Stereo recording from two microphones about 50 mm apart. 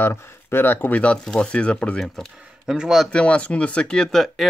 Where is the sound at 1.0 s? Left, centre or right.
Centre.